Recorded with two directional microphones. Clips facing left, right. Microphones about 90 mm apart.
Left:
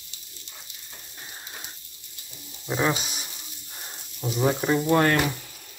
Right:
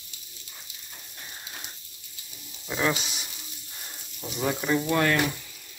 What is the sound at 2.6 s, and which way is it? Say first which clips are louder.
Speech: left 2 dB; 20° left (ahead or behind).